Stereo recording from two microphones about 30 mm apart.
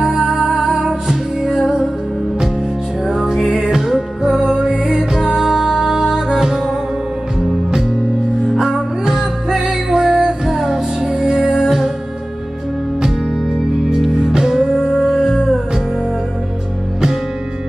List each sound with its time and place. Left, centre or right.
0.1 s music: centre
1.4 s music: centre
3.1 s music: centre
9.5 s music: right
14.5 s music: centre